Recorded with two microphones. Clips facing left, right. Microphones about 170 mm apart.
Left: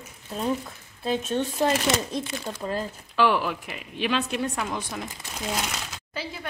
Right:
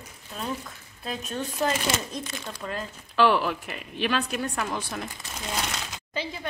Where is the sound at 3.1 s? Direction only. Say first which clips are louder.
Right 1 dB; 15° left (ahead or behind).